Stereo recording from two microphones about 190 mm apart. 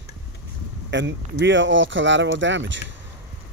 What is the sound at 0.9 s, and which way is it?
Speech, 70° right (ahead or behind).